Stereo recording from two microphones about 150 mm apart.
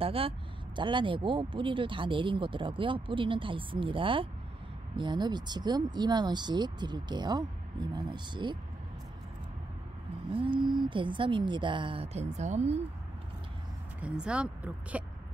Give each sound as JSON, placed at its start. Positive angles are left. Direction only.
{"t": 0.0, "sound": "speech", "side_deg": -40}
{"t": 10.3, "sound": "speech", "side_deg": -35}
{"t": 14.0, "sound": "speech", "side_deg": -5}